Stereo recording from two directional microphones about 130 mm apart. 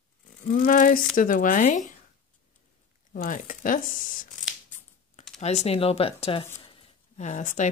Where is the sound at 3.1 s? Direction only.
85° left.